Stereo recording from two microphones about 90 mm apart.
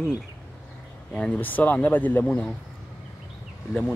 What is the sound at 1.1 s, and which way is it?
Speech, 15° left (ahead or behind).